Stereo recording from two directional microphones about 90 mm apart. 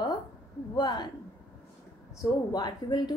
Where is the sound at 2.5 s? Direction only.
50° left (ahead or behind).